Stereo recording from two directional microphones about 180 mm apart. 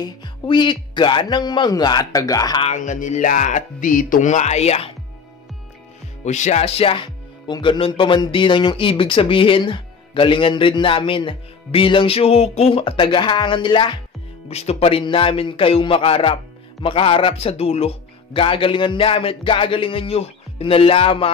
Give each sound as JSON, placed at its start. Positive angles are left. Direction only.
{"t": 0.0, "sound": "speech", "side_deg": 25}
{"t": 2.6, "sound": "speech", "side_deg": 45}
{"t": 6.2, "sound": "speech", "side_deg": 40}